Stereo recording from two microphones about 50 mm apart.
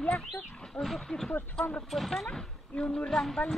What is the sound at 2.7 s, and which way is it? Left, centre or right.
Speech, left.